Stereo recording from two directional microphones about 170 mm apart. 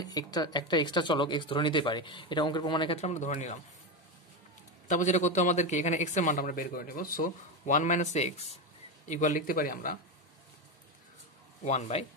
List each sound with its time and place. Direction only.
0.0 s speech: 25° left (ahead or behind)
3.0 s a man's voice: 40° left (ahead or behind)
4.8 s a man's voice: 45° left (ahead or behind)
11.6 s speech: 40° left (ahead or behind)